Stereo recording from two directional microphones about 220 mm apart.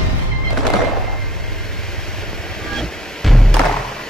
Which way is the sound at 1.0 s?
Centre (ahead or behind).